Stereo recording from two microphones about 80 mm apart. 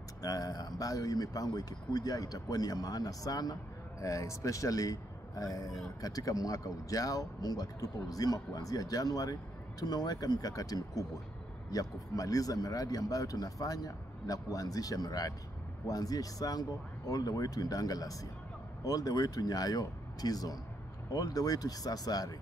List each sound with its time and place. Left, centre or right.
0.2 s speech: left
4.0 s speech: left